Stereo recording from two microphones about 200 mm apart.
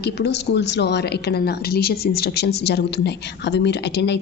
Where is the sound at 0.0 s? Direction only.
60° left (ahead or behind).